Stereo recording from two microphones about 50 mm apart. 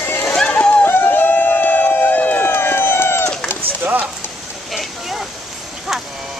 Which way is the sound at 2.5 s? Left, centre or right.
Left.